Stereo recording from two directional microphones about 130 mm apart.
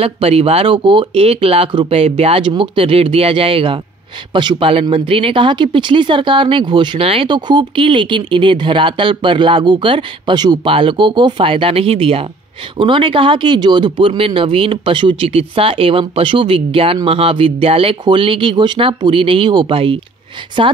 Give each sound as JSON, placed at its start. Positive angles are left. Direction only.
{"t": 0.0, "sound": "speech", "side_deg": -50}